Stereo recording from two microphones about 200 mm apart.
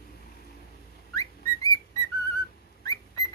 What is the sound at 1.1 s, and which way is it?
Whistling, 15° left (ahead or behind).